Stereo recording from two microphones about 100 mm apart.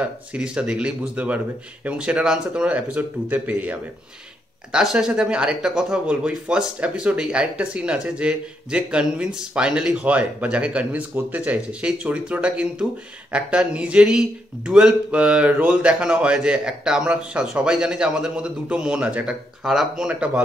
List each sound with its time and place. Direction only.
0.0 s speech: 10° right (ahead or behind)
4.7 s speech: 5° right (ahead or behind)